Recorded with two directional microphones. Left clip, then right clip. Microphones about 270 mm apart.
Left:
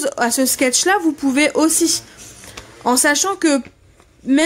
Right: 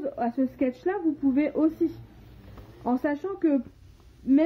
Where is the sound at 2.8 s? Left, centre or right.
Left.